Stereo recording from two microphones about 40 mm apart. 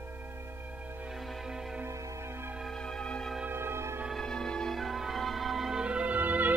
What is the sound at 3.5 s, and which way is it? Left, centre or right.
Music, right.